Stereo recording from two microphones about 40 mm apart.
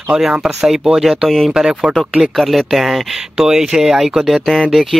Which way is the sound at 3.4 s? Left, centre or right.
Centre.